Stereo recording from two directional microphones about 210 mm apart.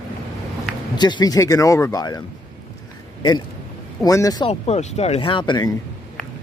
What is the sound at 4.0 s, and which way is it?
Speech, 15° left (ahead or behind).